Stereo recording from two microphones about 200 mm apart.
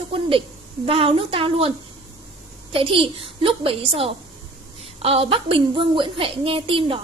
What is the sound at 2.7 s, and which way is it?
A woman's voice, 25° right (ahead or behind).